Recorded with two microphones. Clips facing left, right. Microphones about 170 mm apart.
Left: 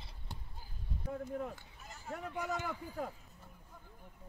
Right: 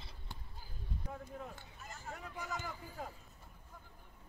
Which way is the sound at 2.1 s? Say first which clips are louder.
Left 6 dB; 60° left (ahead or behind).